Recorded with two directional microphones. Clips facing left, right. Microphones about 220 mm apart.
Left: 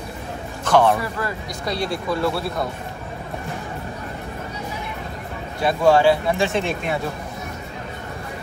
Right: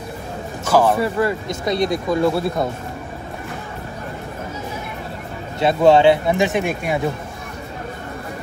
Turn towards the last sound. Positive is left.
turn(degrees=-15)  # may be behind; listen again after turning